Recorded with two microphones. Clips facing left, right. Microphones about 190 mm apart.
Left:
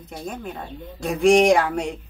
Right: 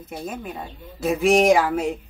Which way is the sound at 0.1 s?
5° right (ahead or behind).